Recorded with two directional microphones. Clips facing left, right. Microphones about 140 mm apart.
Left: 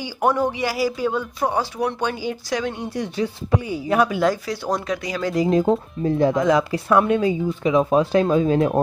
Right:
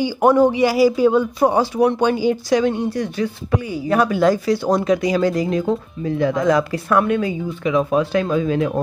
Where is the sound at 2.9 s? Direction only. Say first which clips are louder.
Right 2 dB; 25° left (ahead or behind).